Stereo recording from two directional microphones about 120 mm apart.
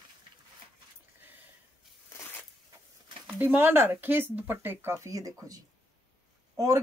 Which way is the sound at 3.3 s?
15° right (ahead or behind).